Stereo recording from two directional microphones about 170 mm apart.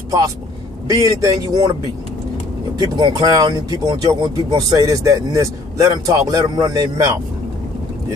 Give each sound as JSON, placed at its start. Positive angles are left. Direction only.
{"t": 0.8, "sound": "speech", "side_deg": -20}
{"t": 2.8, "sound": "speech", "side_deg": -25}